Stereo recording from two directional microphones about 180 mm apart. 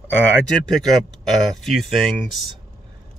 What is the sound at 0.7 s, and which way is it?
Speech, centre (ahead or behind).